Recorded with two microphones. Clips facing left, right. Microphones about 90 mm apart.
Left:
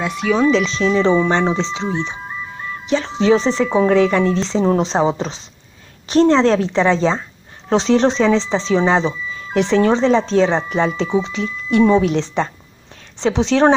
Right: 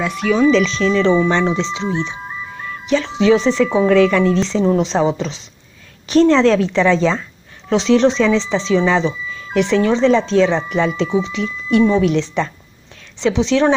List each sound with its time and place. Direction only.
0.0 s a woman's voice: 15° left (ahead or behind); by 1.9 s 35° left (ahead or behind)
2.9 s a woman's voice: 35° left (ahead or behind)